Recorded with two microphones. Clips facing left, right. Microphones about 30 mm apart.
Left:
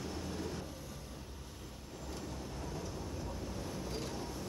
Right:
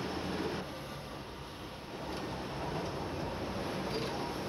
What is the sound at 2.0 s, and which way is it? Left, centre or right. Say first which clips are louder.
Train: right 5 dB; right.